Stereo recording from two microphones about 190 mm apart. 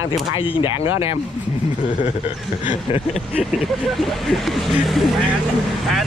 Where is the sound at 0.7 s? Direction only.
15° right (ahead or behind).